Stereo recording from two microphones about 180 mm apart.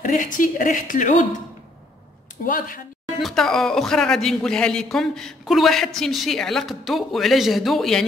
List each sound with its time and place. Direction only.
0.0 s speech: 50° left (ahead or behind)
2.4 s speech: 50° left (ahead or behind)
3.2 s speech: centre (ahead or behind)